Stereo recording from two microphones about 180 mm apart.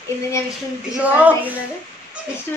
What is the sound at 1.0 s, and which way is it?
Speech, 10° right (ahead or behind).